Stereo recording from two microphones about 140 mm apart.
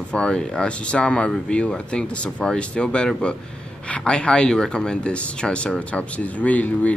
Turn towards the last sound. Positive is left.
turn(degrees=10)  # may be behind; listen again after turning